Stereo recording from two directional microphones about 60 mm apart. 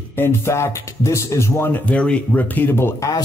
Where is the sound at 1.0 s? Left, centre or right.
Left.